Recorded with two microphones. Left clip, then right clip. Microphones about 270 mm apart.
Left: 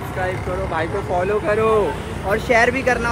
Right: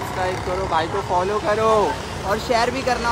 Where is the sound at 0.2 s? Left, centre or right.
Right.